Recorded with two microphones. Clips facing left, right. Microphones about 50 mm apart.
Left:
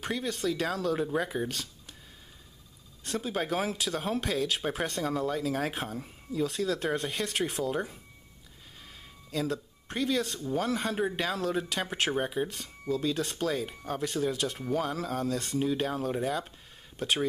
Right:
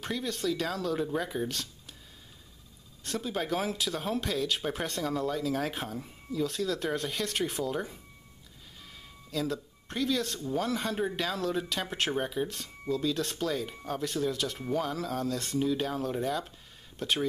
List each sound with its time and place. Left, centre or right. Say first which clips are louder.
0.0 s speech: left 1 dB; centre
3.0 s speech: left 1 dB; centre
5.3 s speech: even; centre
5.6 s speech: left 1 dB; centre
9.3 s speech: left 1 dB; centre